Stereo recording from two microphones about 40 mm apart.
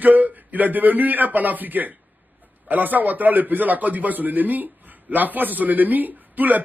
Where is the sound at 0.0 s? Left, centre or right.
Right.